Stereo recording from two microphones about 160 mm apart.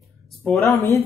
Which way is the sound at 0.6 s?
20° left (ahead or behind).